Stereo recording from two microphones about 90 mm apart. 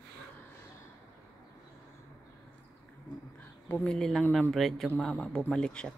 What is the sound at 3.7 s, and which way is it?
Speech, 15° left (ahead or behind).